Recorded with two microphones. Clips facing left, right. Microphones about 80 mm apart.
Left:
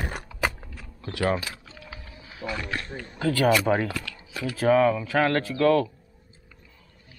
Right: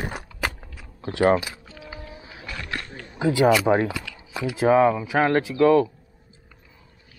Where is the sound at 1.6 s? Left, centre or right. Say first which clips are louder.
Right 4 dB; centre.